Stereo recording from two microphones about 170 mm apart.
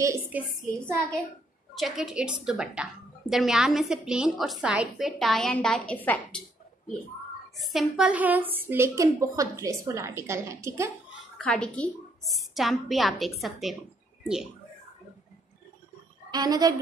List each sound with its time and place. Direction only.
0.0 s a sound: 15° right (ahead or behind)
1.8 s a woman's voice: centre (ahead or behind)
7.6 s a woman's voice: centre (ahead or behind); by 10.9 s 15° right (ahead or behind)
11.3 s a woman's voice: 5° left (ahead or behind)
16.3 s a woman's voice: 25° right (ahead or behind)